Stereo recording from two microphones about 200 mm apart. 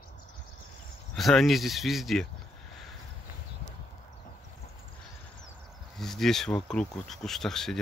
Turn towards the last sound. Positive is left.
turn(degrees=0)  # may be behind; listen again after turning